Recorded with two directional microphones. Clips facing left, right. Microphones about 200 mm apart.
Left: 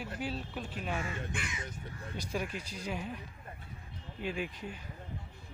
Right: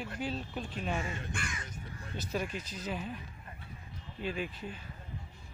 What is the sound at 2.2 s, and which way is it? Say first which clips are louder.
Speech: right 1 dB; 10° left (ahead or behind).